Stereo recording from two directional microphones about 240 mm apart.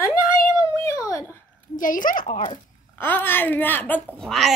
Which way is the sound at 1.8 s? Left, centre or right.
Left.